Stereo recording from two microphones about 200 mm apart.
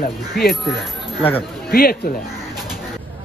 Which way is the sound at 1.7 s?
50° left (ahead or behind).